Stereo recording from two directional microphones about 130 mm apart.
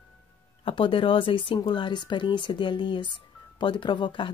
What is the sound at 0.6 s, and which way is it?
Speech, 40° left (ahead or behind).